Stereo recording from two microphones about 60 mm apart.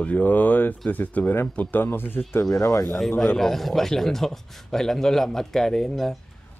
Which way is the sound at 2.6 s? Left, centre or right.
Left.